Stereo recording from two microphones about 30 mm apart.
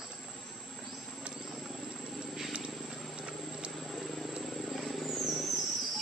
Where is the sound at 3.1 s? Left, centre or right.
Right.